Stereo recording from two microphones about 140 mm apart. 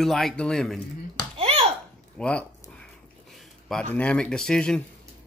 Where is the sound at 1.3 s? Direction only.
45° right (ahead or behind).